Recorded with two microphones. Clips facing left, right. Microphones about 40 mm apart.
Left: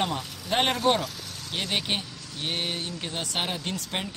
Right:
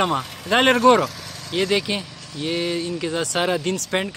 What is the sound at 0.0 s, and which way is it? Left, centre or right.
Speech, right.